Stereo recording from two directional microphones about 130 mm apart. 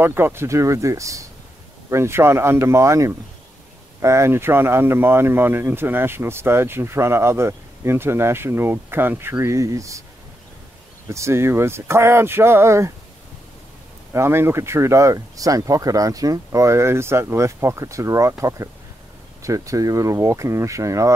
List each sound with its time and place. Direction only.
0.0 s speech: 15° right (ahead or behind)
11.1 s speech: 20° right (ahead or behind)
14.1 s speech: 20° right (ahead or behind)
19.4 s speech: 25° right (ahead or behind)